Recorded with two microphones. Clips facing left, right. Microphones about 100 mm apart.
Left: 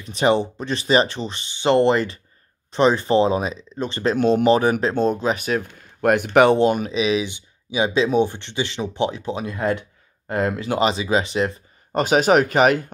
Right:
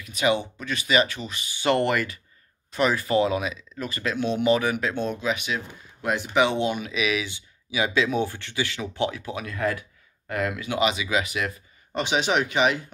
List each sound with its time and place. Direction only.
0.0 s speech: 35° left (ahead or behind)
5.9 s speech: 60° left (ahead or behind)
6.9 s speech: 25° left (ahead or behind)
11.9 s speech: 45° left (ahead or behind)